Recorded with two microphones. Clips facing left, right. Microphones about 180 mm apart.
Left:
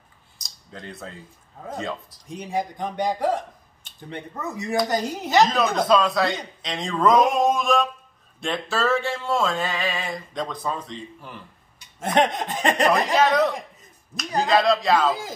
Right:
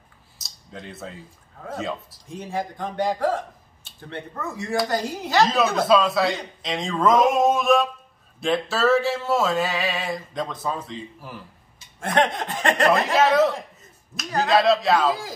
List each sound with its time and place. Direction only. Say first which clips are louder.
0.4 s a sound: right 1 dB; centre (ahead or behind)
2.2 s a man's voice: left 2 dB; 15° left (ahead or behind)
4.0 s chuckle: even; 15° left (ahead or behind)
5.8 s music: even; 5° right (ahead or behind)
12.0 s chuckle: left 1 dB; 20° left (ahead or behind)
12.9 s music: right 1 dB; 5° right (ahead or behind)